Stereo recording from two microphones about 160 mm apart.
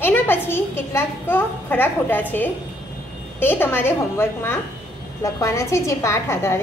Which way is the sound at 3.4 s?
15° left (ahead or behind).